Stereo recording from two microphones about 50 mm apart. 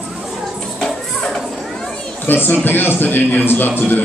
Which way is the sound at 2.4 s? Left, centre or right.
Left.